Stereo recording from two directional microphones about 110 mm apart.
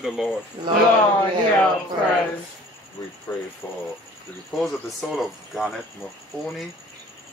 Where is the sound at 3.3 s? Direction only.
30° left (ahead or behind).